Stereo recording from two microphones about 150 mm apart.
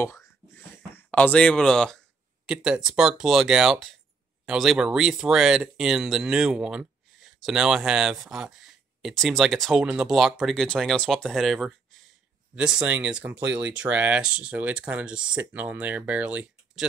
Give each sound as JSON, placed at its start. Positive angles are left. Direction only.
{"t": 0.0, "sound": "speech", "side_deg": 20}